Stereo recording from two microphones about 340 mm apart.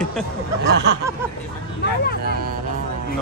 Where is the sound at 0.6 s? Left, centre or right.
Right.